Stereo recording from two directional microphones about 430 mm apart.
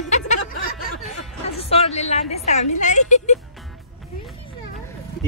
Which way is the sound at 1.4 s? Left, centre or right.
Centre.